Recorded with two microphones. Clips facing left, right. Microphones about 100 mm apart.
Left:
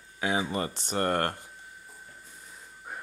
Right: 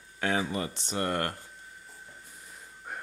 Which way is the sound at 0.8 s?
50° left (ahead or behind).